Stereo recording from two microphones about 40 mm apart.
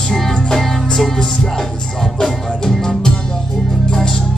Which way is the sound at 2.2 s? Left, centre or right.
Centre.